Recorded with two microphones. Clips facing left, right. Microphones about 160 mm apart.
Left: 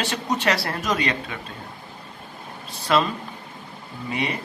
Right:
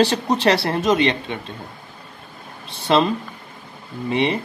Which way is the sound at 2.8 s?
25° right (ahead or behind).